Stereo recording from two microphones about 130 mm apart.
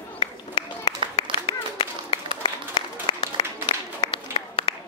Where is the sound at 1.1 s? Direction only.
45° left (ahead or behind).